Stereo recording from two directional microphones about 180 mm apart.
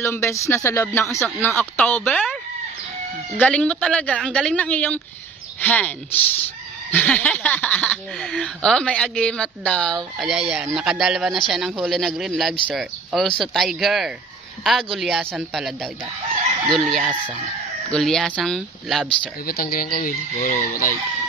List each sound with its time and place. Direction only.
0.0 s speech: 15° left (ahead or behind)
3.3 s speech: 5° left (ahead or behind)
19.4 s speech: 55° left (ahead or behind)